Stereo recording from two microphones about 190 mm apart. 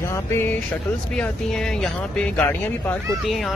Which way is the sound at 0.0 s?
15° left (ahead or behind).